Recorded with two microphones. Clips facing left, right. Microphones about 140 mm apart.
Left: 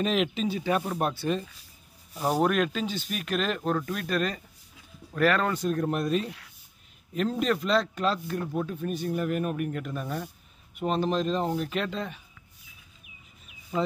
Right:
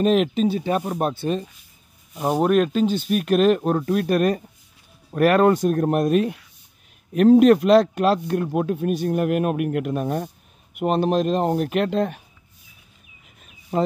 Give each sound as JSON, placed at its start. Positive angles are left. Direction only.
{"t": 0.0, "sound": "speech", "side_deg": -45}
{"t": 0.5, "sound": "speech", "side_deg": -30}
{"t": 2.2, "sound": "speech", "side_deg": -15}
{"t": 2.5, "sound": "speech", "side_deg": -45}